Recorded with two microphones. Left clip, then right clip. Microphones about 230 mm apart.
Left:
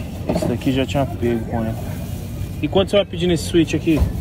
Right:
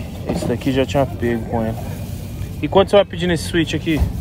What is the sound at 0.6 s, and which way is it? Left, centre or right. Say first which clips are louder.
Speech: right 6 dB; right.